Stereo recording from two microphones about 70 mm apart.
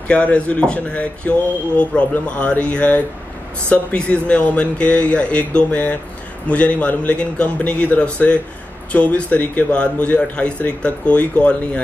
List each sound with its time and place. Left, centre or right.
0.1 s a man's voice: centre